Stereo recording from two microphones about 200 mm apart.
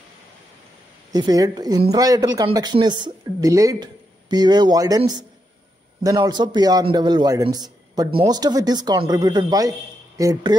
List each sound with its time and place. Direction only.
1.1 s a man's voice: 20° right (ahead or behind)